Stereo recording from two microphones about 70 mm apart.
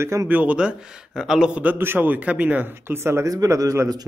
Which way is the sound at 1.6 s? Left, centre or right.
Right.